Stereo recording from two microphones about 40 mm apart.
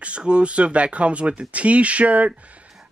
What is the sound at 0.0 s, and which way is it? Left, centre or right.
Speech, right.